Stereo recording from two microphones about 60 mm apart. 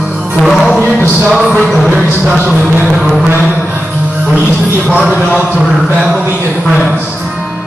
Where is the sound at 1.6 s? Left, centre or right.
Centre.